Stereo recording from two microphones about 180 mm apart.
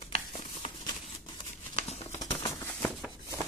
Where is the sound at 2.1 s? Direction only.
15° left (ahead or behind).